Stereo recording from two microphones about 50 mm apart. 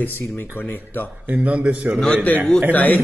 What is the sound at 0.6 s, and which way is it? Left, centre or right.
Speech, left.